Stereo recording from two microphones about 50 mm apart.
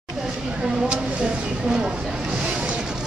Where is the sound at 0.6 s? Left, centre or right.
Centre.